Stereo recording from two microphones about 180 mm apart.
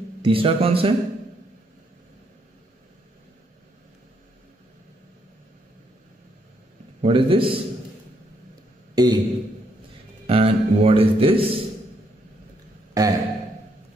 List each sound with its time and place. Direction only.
0.2 s speech: 30° right (ahead or behind)
7.0 s a man's voice: 30° right (ahead or behind)
8.9 s a sound: 20° right (ahead or behind)
10.2 s music: 30° right (ahead or behind)
13.0 s a man's voice: 20° right (ahead or behind)